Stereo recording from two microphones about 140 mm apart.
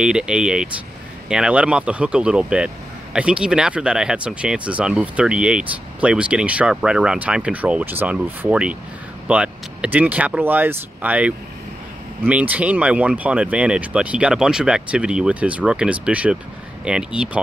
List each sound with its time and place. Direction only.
0.0 s speech: 5° right (ahead or behind)